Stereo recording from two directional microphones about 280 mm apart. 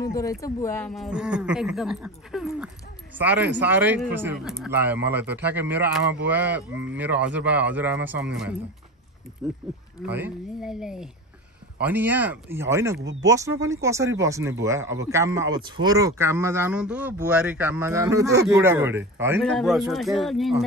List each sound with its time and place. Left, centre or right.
0.0 s speech: centre
12.9 s speech: right
13.2 s speech: centre